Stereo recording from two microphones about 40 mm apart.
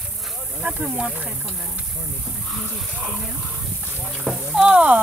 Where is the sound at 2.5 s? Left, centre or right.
Centre.